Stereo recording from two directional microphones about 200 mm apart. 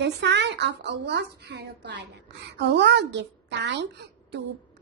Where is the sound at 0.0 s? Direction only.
60° right (ahead or behind).